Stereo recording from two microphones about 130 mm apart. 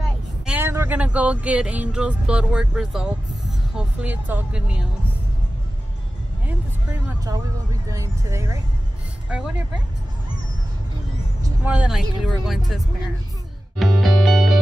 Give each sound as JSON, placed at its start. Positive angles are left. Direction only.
{"t": 0.5, "sound": "speech", "side_deg": -15}
{"t": 7.2, "sound": "speech", "side_deg": -25}
{"t": 11.6, "sound": "speech", "side_deg": -10}
{"t": 13.7, "sound": "music", "side_deg": 0}